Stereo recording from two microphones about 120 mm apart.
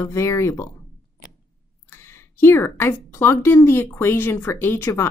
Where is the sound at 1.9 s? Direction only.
20° left (ahead or behind).